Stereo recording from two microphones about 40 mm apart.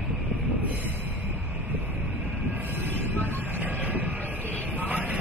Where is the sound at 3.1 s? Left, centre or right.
Right.